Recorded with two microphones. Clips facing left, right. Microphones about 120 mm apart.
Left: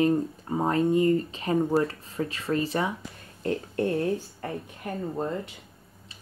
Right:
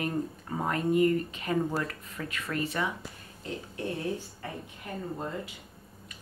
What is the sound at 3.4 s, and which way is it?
Speech, 55° left (ahead or behind).